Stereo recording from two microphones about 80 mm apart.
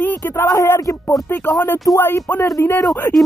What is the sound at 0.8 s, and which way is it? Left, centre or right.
Speech, left.